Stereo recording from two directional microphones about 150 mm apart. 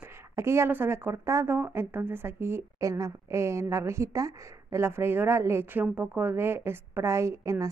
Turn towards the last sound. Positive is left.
turn(degrees=-20)  # may be behind; listen again after turning